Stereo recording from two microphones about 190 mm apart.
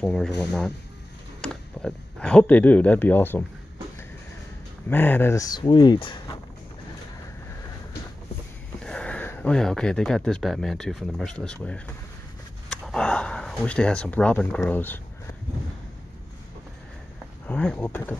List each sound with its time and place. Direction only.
0.0 s speech: 5° left (ahead or behind)
4.8 s speech: 10° left (ahead or behind)
8.8 s speech: 5° left (ahead or behind)
17.5 s speech: 5° left (ahead or behind)